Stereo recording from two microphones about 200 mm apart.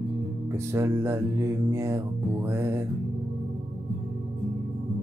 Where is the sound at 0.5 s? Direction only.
15° right (ahead or behind).